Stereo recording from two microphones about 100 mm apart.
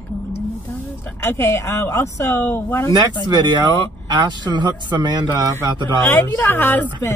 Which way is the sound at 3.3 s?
50° right (ahead or behind).